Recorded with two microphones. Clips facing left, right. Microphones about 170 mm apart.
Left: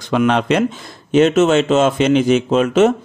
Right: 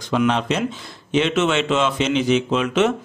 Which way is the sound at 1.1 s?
45° left (ahead or behind).